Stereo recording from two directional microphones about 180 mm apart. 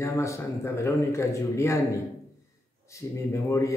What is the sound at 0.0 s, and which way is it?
A man's voice, 15° left (ahead or behind).